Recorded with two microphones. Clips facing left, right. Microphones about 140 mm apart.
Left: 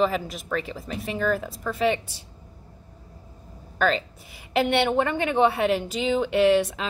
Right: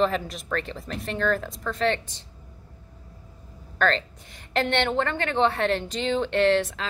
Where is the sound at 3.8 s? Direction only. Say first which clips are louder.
Left 1 dB; 5° left (ahead or behind).